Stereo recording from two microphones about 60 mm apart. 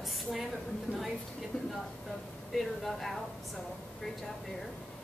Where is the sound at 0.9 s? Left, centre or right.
Right.